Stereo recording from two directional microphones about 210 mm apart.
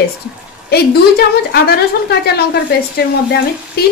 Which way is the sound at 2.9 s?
50° left (ahead or behind).